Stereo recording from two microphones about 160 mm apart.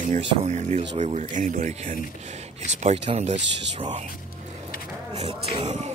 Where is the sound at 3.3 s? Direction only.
90° right.